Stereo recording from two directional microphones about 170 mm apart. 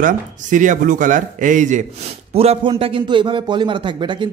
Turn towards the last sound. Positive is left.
turn(degrees=-30)  # may be behind; listen again after turning